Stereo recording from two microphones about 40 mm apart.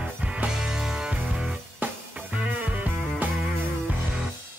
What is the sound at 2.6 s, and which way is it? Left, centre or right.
Music, right.